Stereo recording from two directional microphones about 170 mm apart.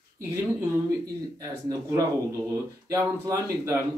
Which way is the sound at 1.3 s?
20° right (ahead or behind).